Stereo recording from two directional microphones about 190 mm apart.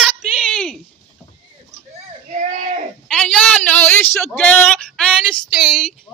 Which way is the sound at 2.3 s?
40° right (ahead or behind).